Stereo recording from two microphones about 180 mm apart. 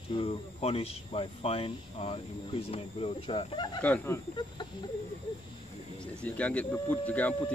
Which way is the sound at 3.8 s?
10° left (ahead or behind).